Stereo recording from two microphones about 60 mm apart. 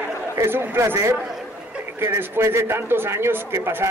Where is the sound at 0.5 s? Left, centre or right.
Right.